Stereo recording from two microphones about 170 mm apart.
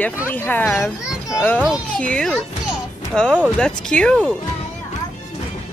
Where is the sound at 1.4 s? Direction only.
10° left (ahead or behind).